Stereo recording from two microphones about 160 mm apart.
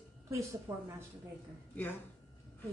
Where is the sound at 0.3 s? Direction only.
20° right (ahead or behind).